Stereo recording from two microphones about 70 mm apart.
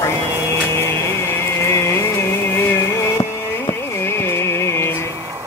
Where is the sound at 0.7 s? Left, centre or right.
Left.